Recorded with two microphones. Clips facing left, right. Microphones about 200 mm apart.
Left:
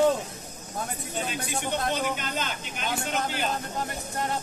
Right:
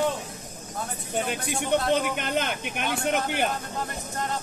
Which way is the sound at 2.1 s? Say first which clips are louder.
Right 5 dB; 60° right (ahead or behind).